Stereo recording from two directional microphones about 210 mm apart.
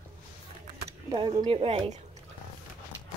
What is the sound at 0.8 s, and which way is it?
Speech, 25° right (ahead or behind).